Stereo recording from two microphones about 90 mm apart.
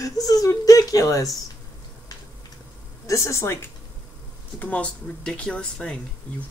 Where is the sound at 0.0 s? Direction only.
40° left (ahead or behind).